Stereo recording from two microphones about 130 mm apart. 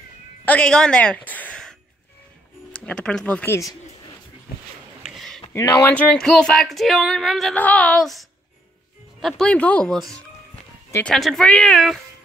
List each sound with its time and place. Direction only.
0.5 s a woman's voice: 5° left (ahead or behind)
2.8 s a woman's voice: 5° left (ahead or behind)
5.0 s a sound: centre (ahead or behind)
5.5 s speech: 25° left (ahead or behind)
5.9 s speech: 5° left (ahead or behind)
7.5 s a woman's voice: 10° left (ahead or behind)